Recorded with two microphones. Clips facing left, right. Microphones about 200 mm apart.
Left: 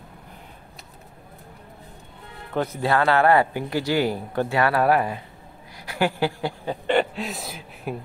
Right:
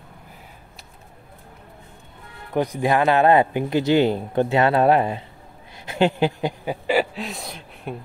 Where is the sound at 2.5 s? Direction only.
15° right (ahead or behind); by 7.9 s 5° left (ahead or behind).